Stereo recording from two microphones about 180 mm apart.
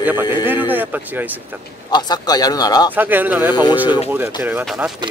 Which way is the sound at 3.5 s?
25° left (ahead or behind).